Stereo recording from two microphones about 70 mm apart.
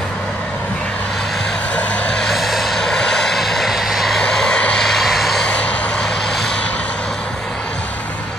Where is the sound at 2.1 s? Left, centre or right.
Centre.